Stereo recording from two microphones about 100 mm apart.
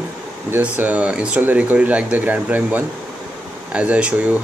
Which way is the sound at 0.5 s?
15° right (ahead or behind).